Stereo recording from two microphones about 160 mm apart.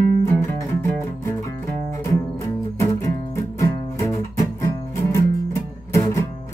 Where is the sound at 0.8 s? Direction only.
15° left (ahead or behind).